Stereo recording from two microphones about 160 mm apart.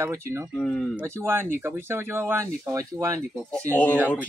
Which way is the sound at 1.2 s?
15° right (ahead or behind).